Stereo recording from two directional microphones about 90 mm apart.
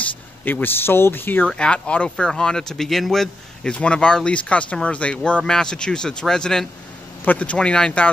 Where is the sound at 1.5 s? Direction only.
10° left (ahead or behind).